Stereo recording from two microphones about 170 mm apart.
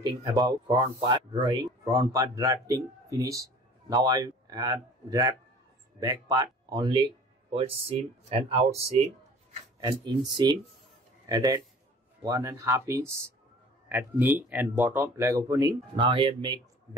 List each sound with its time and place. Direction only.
0.0 s speech: 20° right (ahead or behind)
9.8 s speech: 25° right (ahead or behind)